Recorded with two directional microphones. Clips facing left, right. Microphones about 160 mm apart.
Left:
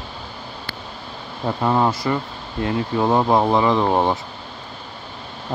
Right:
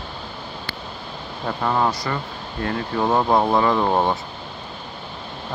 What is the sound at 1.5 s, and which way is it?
Speech, 10° left (ahead or behind).